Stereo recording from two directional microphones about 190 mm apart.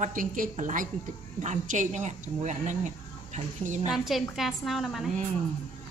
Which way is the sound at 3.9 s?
Centre (ahead or behind).